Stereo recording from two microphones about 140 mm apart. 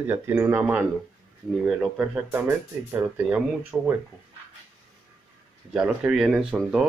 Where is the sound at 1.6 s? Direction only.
Centre (ahead or behind).